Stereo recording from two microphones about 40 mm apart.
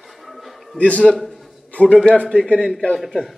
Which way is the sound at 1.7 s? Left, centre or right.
Left.